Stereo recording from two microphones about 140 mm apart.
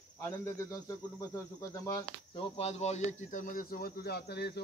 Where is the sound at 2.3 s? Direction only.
40° left (ahead or behind); by 4.2 s 90° left.